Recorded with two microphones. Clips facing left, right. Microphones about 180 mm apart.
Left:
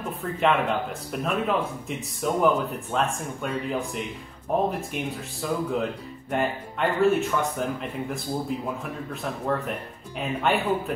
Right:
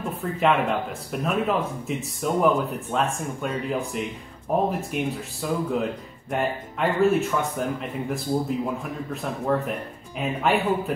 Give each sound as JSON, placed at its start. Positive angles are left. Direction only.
{"t": 0.2, "sound": "speech", "side_deg": 0}